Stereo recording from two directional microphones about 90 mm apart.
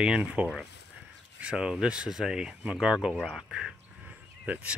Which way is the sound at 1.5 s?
10° right (ahead or behind).